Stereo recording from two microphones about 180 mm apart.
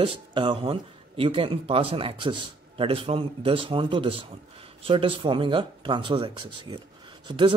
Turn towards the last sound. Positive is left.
turn(degrees=-25)  # may be behind; listen again after turning